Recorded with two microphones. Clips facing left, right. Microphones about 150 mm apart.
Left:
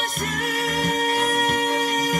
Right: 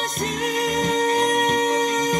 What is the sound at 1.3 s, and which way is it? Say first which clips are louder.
Music: right 2 dB; 20° right (ahead or behind).